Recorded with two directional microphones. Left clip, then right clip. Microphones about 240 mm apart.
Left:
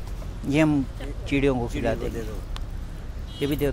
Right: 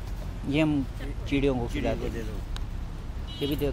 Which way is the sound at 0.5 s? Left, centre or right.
Left.